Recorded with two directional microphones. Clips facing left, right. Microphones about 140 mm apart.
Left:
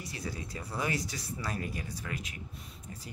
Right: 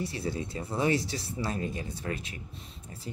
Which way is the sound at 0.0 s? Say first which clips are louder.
Right 7 dB; 30° right (ahead or behind).